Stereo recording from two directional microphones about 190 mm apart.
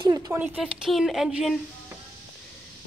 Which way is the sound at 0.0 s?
20° right (ahead or behind).